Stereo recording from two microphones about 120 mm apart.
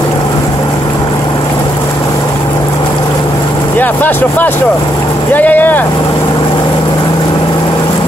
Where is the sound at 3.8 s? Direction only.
15° left (ahead or behind).